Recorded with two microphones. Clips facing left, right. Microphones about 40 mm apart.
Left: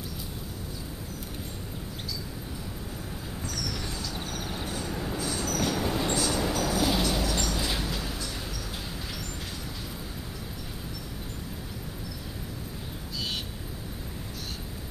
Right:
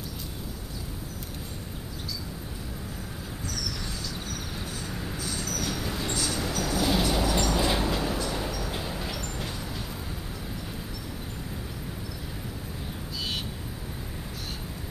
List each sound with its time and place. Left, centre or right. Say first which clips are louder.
3.7 s a sound: left 1 dB; centre
4.1 s vehicle: left 1 dB; centre
4.8 s train: left 2 dB; centre
5.4 s train: left 5 dB; left
5.7 s train: left 4 dB; centre
6.1 s vehicle: left 2 dB; centre